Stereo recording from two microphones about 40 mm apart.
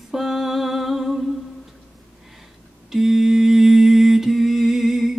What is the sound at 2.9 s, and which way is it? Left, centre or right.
Mantra, centre.